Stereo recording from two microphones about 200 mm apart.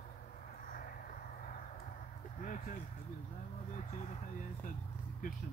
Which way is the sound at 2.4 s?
40° left (ahead or behind).